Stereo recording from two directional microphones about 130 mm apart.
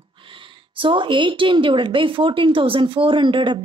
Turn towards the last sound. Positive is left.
turn(degrees=-40)  # may be behind; listen again after turning